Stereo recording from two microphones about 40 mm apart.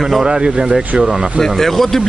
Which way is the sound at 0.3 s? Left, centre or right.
Right.